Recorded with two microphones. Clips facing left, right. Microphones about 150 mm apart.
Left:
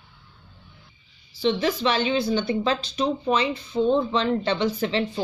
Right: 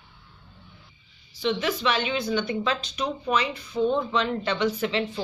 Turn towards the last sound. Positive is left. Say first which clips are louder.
# left 2 dB
turn(degrees=30)  # may be behind; listen again after turning